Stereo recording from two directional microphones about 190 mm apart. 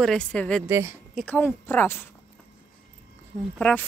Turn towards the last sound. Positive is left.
turn(degrees=5)  # may be behind; listen again after turning